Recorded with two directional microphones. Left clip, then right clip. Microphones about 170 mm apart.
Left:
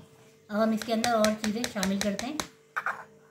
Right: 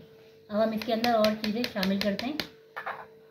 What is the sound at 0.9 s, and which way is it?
Speech, 15° right (ahead or behind).